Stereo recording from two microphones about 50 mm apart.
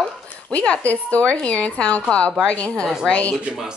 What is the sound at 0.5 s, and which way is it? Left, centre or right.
Speech, left.